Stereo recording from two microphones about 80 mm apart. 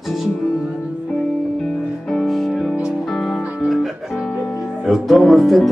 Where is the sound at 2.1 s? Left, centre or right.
Centre.